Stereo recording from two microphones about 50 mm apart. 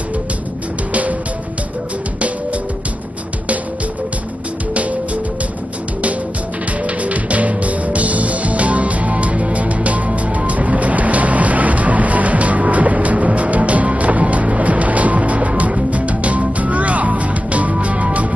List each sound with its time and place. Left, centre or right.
7.0 s music: right